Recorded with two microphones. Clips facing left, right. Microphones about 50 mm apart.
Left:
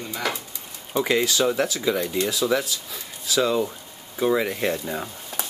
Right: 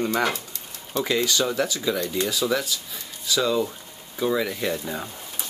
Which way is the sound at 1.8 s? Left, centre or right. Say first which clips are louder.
Left 2 dB; centre.